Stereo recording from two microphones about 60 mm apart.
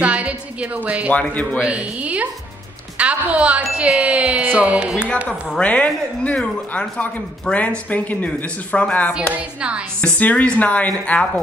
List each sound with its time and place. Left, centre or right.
0.0 s a woman's voice: right
1.1 s speech: left
1.6 s a woman's voice: right
5.6 s speech: left
9.3 s a woman's voice: right
10.0 s speech: centre